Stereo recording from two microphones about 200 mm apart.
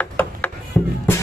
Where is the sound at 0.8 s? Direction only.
5° left (ahead or behind).